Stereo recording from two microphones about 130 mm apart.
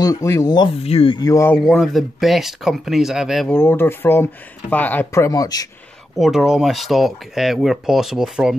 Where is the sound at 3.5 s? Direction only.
15° left (ahead or behind).